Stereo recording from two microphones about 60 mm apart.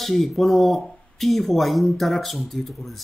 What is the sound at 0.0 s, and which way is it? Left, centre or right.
Speech, centre.